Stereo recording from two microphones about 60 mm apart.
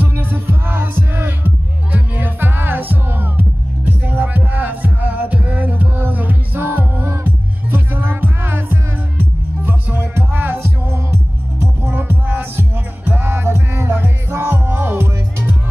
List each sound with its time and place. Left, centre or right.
0.1 s music: right
11.9 s music: right